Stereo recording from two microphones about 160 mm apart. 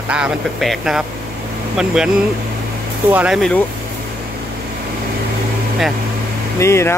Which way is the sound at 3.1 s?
10° right (ahead or behind).